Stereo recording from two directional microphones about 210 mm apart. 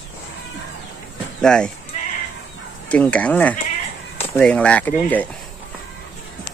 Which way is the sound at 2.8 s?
5° left (ahead or behind).